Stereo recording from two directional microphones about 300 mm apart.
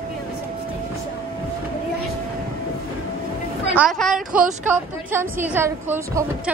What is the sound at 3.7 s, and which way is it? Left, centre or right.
A woman's voice, centre.